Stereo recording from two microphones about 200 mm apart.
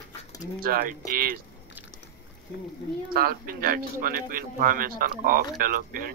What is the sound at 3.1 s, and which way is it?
Speech, 45° right (ahead or behind).